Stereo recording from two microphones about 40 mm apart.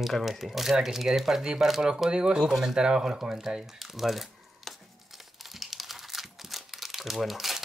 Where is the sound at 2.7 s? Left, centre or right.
Centre.